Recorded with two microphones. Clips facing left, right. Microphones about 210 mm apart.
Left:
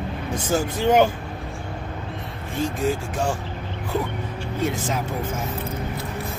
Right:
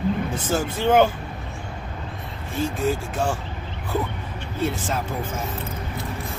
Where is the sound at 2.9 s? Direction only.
10° left (ahead or behind).